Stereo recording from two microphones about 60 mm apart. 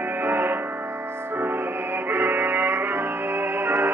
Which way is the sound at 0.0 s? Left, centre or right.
Right.